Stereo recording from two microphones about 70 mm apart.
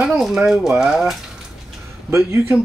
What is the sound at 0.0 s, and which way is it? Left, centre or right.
Speech, centre.